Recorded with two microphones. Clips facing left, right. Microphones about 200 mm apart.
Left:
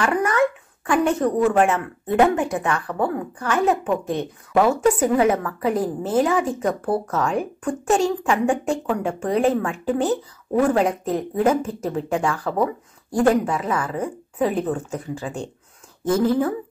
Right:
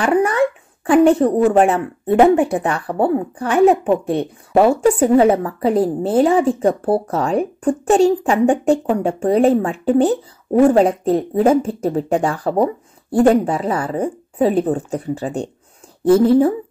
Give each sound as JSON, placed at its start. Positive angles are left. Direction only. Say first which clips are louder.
{"t": 0.0, "sound": "a woman's voice", "louder": "right 4 dB", "side_deg": -30}